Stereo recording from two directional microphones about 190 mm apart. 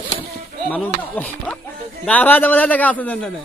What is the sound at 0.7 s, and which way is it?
A man's voice, 10° left (ahead or behind).